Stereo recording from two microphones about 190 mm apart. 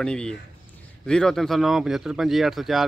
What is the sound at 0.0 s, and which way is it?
Speech, 5° left (ahead or behind).